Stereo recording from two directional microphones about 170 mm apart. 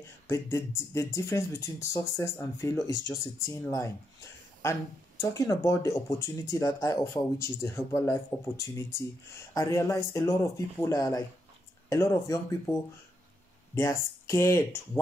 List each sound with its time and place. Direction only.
0.3 s speech: 15° left (ahead or behind)
13.7 s speech: 15° left (ahead or behind)